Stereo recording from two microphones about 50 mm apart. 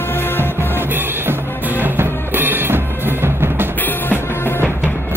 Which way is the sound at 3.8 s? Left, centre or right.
Left.